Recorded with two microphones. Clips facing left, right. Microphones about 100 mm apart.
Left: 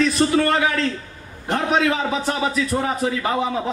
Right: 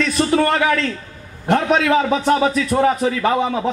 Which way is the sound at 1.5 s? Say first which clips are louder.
Right 4 dB; 45° right (ahead or behind).